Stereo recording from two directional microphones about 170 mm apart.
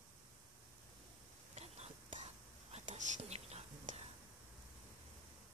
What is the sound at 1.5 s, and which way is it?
Whispering, 40° right (ahead or behind).